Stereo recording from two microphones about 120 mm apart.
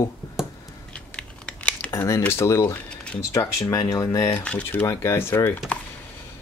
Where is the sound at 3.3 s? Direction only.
25° left (ahead or behind).